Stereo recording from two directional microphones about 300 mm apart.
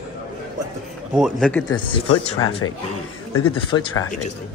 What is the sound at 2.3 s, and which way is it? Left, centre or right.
Speech, left.